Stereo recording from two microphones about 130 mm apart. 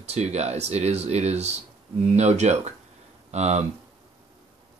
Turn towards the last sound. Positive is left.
turn(degrees=-55)  # may be behind; listen again after turning